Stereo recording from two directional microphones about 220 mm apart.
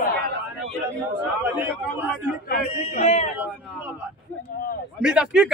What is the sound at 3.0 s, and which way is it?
Speech, 30° left (ahead or behind).